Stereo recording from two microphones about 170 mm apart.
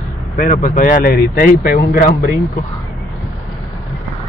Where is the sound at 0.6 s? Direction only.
55° left (ahead or behind).